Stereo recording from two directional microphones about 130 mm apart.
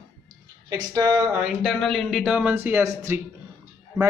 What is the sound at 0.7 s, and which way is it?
Speech, 30° right (ahead or behind).